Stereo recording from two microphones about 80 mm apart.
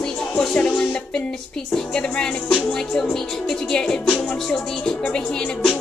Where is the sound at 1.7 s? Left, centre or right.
Centre.